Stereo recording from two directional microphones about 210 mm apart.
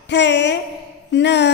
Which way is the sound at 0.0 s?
55° left (ahead or behind).